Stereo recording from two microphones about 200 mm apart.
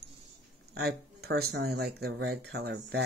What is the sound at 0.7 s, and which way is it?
Speech, 55° right (ahead or behind).